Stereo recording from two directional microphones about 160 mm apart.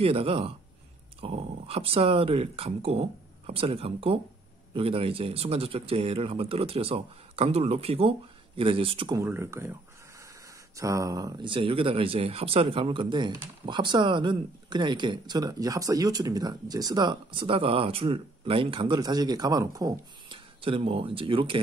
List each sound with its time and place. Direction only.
0.0 s speech: 35° right (ahead or behind)
9.1 s speech: 15° right (ahead or behind)
10.8 s speech: 20° right (ahead or behind)
20.6 s speech: 35° right (ahead or behind)